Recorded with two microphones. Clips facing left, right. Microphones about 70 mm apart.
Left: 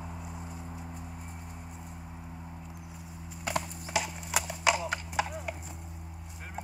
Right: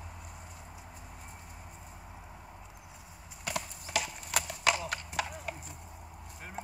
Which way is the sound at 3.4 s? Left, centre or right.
Left.